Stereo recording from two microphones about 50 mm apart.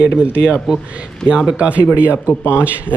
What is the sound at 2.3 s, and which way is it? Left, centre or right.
Speech, left.